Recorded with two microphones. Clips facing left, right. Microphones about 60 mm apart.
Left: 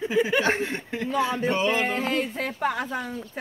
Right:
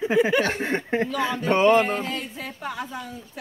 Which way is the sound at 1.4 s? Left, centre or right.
Right.